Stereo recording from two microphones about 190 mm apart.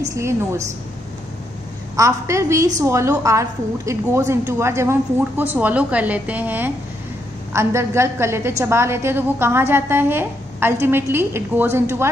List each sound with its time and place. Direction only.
0.1 s a woman's voice: 15° right (ahead or behind)
2.0 s a woman's voice: 15° right (ahead or behind)